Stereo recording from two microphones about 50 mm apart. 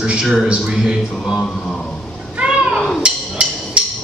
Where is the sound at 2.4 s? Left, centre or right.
Right.